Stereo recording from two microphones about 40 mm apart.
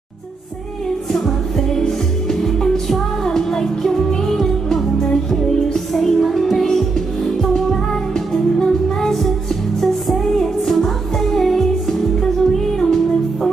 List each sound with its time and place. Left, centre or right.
1.1 s music: centre